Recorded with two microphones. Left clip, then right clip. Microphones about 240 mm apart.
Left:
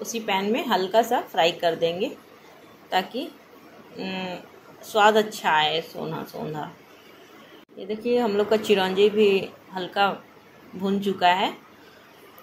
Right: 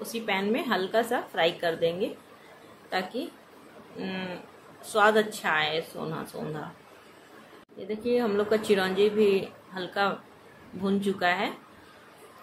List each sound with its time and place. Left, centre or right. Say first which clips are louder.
0.3 s speech: left 4 dB; centre
7.8 s speech: left 3 dB; centre